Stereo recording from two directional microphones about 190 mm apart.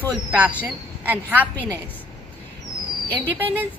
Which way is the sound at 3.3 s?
10° right (ahead or behind).